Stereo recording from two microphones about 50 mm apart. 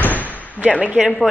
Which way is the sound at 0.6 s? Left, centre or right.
Right.